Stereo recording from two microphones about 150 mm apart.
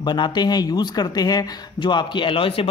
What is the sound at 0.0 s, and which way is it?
Speech, 30° left (ahead or behind).